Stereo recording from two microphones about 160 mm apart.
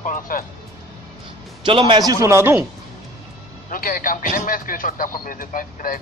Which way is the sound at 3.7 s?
60° left (ahead or behind).